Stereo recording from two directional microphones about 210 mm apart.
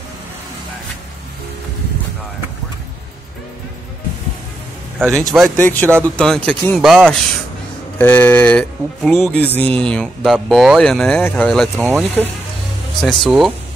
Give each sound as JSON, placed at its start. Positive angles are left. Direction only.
{"t": 5.0, "sound": "a man's voice", "side_deg": -15}
{"t": 5.3, "sound": "speech", "side_deg": 5}